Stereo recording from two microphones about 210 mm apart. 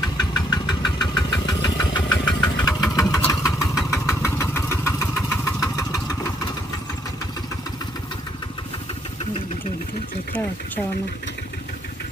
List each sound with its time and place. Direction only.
0.2 s engine: 20° left (ahead or behind)